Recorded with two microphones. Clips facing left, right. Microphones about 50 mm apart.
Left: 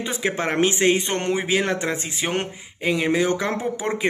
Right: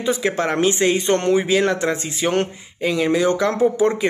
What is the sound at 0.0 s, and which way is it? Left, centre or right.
Speech, left.